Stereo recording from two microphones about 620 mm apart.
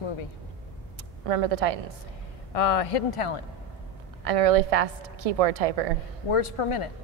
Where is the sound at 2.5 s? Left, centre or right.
Left.